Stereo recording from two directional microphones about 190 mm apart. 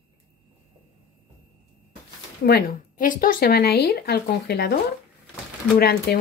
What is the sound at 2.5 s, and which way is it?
Speech, 50° left (ahead or behind).